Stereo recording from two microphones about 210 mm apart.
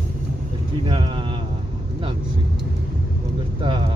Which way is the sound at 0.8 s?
25° right (ahead or behind).